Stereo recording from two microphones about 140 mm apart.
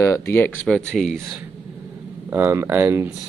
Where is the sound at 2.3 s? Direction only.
15° right (ahead or behind).